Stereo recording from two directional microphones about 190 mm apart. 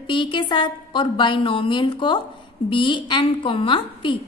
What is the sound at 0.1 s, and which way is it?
A woman's voice, 25° left (ahead or behind).